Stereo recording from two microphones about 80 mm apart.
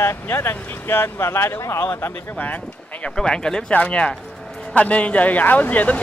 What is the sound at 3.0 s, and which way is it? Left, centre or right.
Speech, centre.